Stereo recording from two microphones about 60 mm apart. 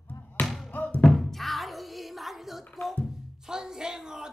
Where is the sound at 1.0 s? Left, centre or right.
Centre.